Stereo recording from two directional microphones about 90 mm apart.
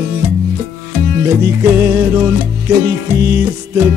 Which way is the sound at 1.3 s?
25° right (ahead or behind).